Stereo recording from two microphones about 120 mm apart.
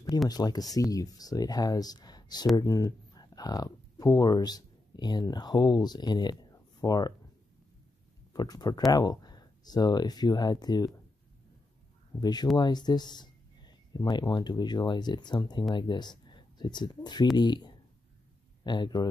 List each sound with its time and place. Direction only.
0.3 s speech: 35° left (ahead or behind)
6.5 s a sound: 30° left (ahead or behind)
8.3 s speech: 35° left (ahead or behind)
12.2 s speech: 35° left (ahead or behind)